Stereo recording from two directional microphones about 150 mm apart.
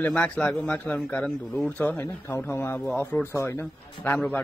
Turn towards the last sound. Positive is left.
turn(degrees=15)  # may be behind; listen again after turning